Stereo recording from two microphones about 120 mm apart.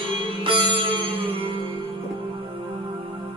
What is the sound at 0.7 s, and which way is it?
Music, 45° right (ahead or behind).